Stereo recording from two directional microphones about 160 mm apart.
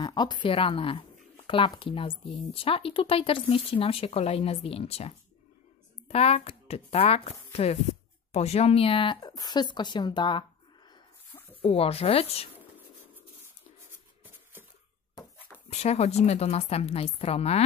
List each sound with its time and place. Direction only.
0.0 s a woman's voice: 30° left (ahead or behind)
11.6 s speech: 40° left (ahead or behind)
15.3 s a sound: 10° left (ahead or behind)
15.7 s speech: 40° left (ahead or behind)